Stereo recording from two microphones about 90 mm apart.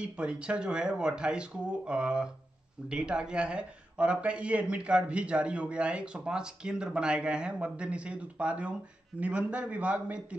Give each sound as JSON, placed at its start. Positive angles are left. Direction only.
{"t": 0.0, "sound": "a man's voice", "side_deg": -10}